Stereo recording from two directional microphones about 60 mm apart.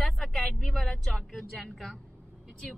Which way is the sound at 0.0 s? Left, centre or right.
Centre.